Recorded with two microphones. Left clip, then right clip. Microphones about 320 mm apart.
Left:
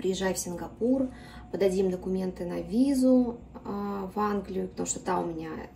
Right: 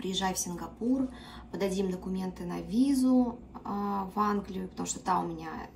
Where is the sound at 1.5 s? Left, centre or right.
Centre.